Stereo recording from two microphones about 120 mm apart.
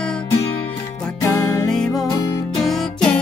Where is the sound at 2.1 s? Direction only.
30° left (ahead or behind).